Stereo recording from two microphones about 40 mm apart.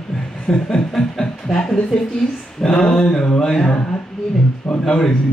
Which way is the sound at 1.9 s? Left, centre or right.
Left.